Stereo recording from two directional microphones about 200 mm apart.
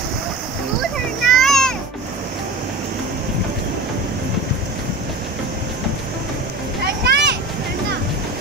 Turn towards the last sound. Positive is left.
turn(degrees=-60)  # may be behind; listen again after turning